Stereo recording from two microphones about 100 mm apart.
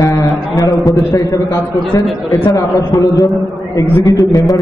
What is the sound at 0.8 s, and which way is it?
Speech, 30° left (ahead or behind).